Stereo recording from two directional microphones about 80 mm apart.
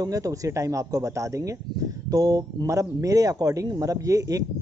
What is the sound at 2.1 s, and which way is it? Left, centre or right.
Speech, right.